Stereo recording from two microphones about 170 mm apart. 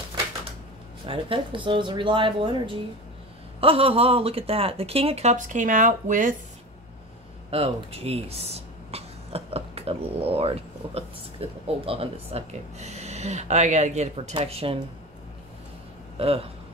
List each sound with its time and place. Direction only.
1.0 s speech: 30° right (ahead or behind); by 6.3 s 50° right (ahead or behind)
7.5 s speech: 35° right (ahead or behind)
16.2 s speech: 35° right (ahead or behind)